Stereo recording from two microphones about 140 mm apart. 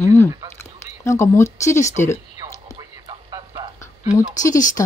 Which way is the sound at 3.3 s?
30° right (ahead or behind).